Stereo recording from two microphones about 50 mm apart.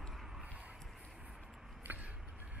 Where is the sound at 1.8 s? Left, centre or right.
Right.